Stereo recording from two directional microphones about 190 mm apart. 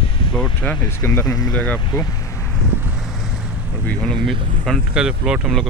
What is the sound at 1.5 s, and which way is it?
Speech, 5° left (ahead or behind).